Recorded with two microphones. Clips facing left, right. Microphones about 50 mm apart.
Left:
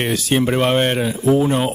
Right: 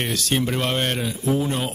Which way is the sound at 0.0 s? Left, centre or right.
Centre.